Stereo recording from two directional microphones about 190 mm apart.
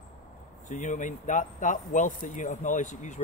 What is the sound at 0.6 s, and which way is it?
Speech, 40° left (ahead or behind).